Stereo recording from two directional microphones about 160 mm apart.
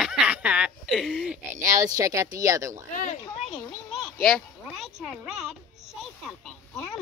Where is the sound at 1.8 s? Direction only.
20° right (ahead or behind).